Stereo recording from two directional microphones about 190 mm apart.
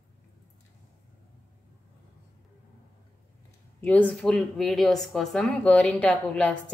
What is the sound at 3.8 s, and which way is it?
Speech, 10° left (ahead or behind).